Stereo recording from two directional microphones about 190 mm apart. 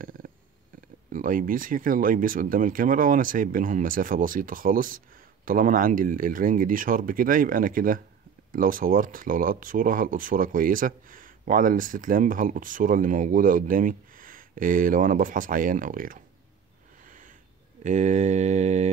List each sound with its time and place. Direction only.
0.2 s a sound: 50° right (ahead or behind)
1.1 s speech: 45° right (ahead or behind)
17.8 s mantra: 40° right (ahead or behind)